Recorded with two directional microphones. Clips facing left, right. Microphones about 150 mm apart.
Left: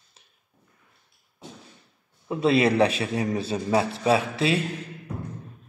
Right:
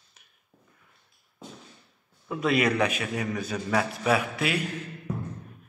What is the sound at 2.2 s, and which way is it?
A man's voice, 30° left (ahead or behind).